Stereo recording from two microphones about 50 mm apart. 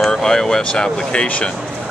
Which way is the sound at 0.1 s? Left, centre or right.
Centre.